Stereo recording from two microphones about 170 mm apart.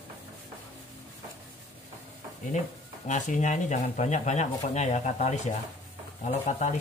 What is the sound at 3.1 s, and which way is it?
Speech, 45° left (ahead or behind).